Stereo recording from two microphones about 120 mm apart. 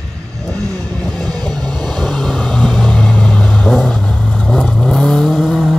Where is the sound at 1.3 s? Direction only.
35° right (ahead or behind).